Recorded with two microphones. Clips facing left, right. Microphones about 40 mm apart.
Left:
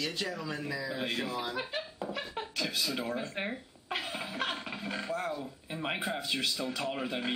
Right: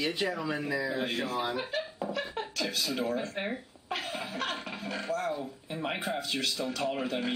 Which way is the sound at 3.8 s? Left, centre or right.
Centre.